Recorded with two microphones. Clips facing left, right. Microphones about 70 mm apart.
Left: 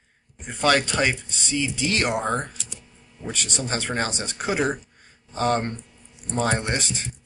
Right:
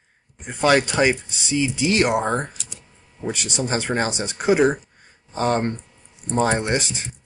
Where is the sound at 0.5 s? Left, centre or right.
Centre.